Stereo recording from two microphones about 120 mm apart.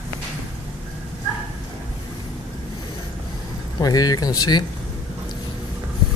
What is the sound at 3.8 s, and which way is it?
Speech, 30° left (ahead or behind).